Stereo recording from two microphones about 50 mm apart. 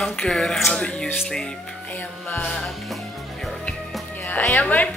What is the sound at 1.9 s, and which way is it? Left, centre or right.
Music, left.